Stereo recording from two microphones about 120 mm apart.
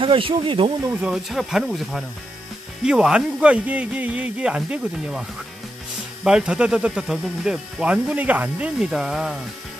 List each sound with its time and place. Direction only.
0.0 s speech: 45° right (ahead or behind)
1.0 s speech: 5° right (ahead or behind)
6.2 s speech: 5° right (ahead or behind)